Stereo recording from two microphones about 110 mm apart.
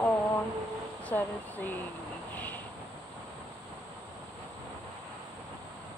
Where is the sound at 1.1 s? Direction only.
15° left (ahead or behind).